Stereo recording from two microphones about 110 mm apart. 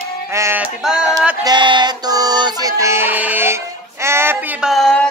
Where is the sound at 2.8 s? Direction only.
25° right (ahead or behind).